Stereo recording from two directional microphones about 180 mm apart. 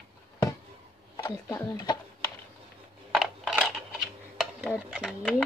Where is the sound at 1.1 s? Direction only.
25° left (ahead or behind).